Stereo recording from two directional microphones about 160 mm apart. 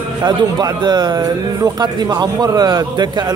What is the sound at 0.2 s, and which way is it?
Speech, 25° right (ahead or behind).